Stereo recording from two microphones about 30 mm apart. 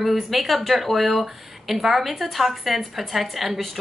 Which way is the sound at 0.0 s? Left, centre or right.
Centre.